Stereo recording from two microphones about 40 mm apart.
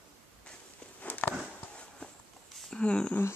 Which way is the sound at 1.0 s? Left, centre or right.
Left.